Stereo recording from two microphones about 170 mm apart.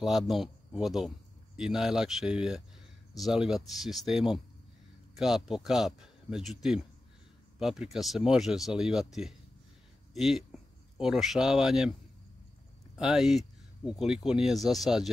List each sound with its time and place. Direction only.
0.0 s speech: centre (ahead or behind)
12.9 s speech: 5° right (ahead or behind)